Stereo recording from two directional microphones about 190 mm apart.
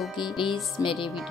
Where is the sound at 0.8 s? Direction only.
25° left (ahead or behind).